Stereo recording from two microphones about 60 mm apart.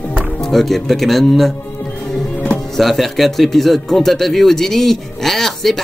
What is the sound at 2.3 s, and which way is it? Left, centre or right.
Music, left.